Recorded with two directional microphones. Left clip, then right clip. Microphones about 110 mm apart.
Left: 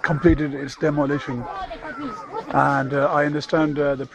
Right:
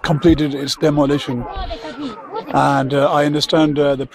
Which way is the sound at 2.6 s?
30° right (ahead or behind).